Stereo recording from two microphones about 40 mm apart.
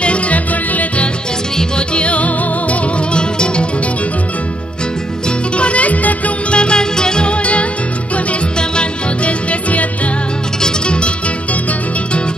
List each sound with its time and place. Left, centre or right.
0.0 s music: left
3.1 s music: left
5.6 s music: left
6.5 s music: left